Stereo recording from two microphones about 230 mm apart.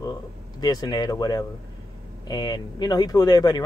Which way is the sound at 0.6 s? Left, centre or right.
Centre.